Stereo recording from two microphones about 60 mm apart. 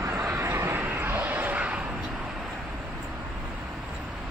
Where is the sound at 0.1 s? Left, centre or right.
Right.